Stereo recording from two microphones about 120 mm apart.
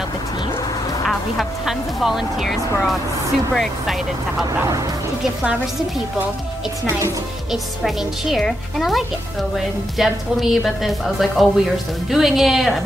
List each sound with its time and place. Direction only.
1.0 s a woman's voice: centre (ahead or behind)
6.9 s speech: 25° right (ahead or behind)
7.5 s speech: centre (ahead or behind)